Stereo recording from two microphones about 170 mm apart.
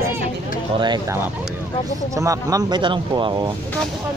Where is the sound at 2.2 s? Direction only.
20° right (ahead or behind).